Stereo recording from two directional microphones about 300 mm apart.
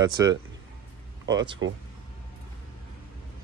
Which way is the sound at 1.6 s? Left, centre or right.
Right.